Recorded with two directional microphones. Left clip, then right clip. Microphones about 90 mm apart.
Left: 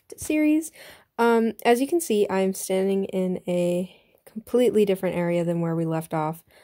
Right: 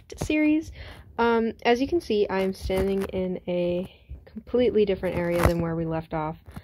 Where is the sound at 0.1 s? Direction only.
35° left (ahead or behind).